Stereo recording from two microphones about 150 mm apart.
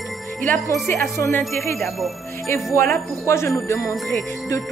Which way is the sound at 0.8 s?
15° left (ahead or behind).